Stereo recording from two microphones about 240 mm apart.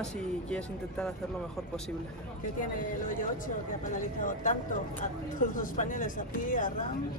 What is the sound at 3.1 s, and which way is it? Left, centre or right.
Speech, left.